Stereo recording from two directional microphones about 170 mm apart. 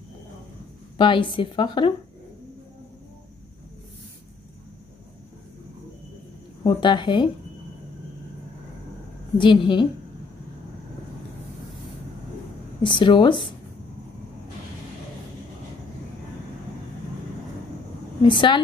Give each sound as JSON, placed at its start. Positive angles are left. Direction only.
{"t": 0.9, "sound": "a woman's voice", "side_deg": 30}
{"t": 6.6, "sound": "a woman's voice", "side_deg": 25}
{"t": 9.4, "sound": "a woman's voice", "side_deg": 30}
{"t": 12.8, "sound": "a woman's voice", "side_deg": 30}
{"t": 18.2, "sound": "a woman's voice", "side_deg": 30}